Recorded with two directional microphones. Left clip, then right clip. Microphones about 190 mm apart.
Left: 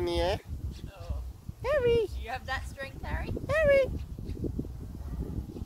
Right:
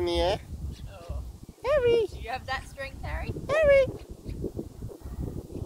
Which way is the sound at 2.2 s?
30° left (ahead or behind).